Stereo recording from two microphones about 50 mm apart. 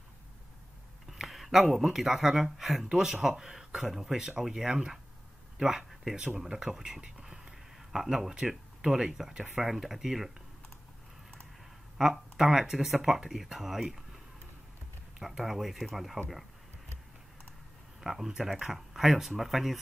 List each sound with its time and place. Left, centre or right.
1.1 s speech: centre
2.9 s speech: centre
6.1 s speech: right
6.4 s speech: centre
12.0 s speech: centre
15.1 s speech: centre
18.0 s speech: centre